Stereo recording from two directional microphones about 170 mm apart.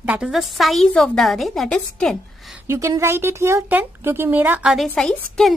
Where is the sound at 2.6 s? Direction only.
15° right (ahead or behind); by 5.5 s 5° left (ahead or behind).